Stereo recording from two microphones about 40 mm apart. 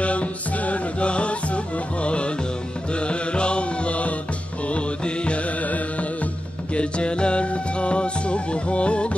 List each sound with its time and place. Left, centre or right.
0.0 s music: left
2.9 s mantra: left
4.6 s music: left
6.7 s music: left